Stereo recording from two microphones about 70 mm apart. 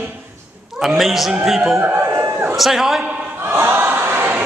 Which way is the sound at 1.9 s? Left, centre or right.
Right.